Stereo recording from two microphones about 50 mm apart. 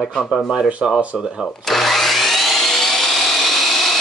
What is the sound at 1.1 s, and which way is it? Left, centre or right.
Speech, centre.